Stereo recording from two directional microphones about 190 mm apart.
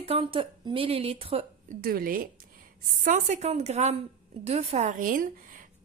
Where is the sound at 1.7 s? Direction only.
50° right (ahead or behind).